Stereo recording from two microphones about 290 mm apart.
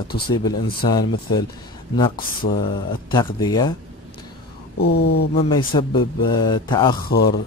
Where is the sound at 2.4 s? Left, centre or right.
Left.